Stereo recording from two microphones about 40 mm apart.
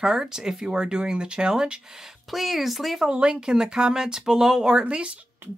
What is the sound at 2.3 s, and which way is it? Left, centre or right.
Speech, centre.